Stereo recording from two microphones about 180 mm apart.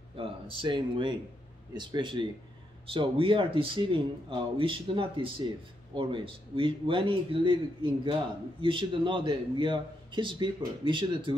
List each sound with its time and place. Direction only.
0.2 s a man's voice: 30° right (ahead or behind)